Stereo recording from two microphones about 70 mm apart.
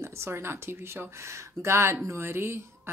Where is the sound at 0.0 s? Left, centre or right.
Right.